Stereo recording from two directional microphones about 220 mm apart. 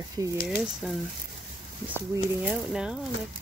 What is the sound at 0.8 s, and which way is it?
Speech, centre (ahead or behind).